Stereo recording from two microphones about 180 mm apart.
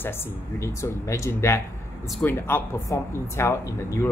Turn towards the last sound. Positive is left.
turn(degrees=15)  # may be behind; listen again after turning